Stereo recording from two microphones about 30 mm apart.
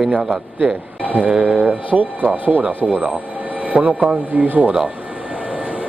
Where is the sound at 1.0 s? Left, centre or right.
Right.